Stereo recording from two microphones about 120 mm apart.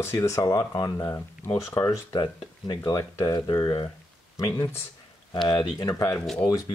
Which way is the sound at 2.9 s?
25° left (ahead or behind).